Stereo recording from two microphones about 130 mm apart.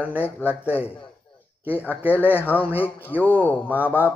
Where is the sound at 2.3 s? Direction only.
15° left (ahead or behind).